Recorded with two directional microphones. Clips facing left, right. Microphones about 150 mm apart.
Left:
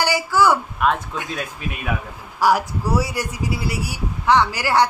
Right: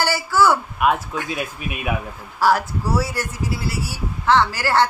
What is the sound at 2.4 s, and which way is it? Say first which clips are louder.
Speech: even; 15° left (ahead or behind).